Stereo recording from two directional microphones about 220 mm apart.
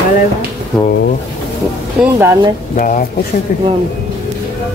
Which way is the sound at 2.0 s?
10° right (ahead or behind).